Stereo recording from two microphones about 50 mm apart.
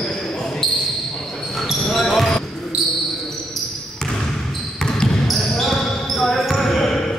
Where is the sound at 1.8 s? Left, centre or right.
Centre.